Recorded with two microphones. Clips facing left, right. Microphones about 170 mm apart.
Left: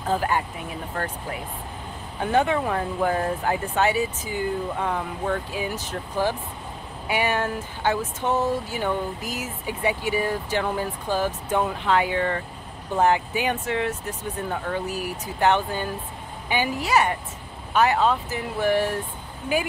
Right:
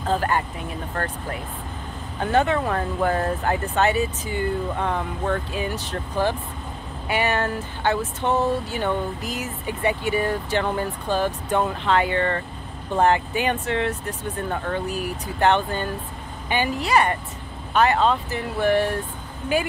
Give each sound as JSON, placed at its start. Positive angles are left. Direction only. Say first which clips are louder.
{"t": 0.0, "sound": "speech", "louder": "right 1 dB", "side_deg": 10}